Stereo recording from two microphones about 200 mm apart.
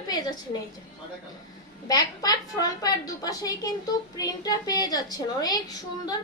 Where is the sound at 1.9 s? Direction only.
20° left (ahead or behind).